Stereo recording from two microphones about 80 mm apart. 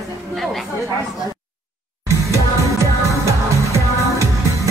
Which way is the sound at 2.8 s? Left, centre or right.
Right.